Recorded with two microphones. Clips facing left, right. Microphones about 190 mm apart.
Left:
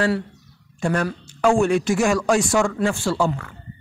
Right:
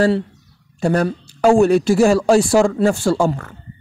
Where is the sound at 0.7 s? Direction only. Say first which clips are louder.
Right 5 dB; 35° right (ahead or behind).